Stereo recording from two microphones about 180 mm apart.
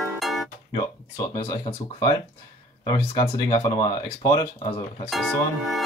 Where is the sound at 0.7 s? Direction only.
20° left (ahead or behind).